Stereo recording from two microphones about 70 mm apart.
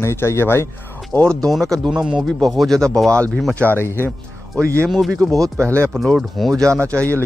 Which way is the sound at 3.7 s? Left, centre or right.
Left.